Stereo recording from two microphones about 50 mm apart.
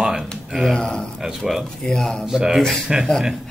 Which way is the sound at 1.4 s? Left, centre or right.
Centre.